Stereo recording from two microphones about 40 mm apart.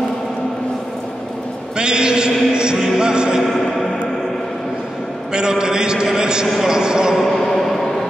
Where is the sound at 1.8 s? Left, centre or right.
Right.